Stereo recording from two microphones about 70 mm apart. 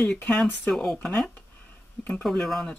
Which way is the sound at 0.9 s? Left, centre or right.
Centre.